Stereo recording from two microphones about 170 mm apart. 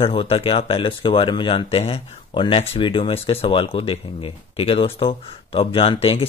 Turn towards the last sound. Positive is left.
turn(degrees=30)  # may be behind; listen again after turning